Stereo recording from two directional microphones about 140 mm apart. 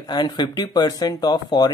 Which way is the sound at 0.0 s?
30° left (ahead or behind).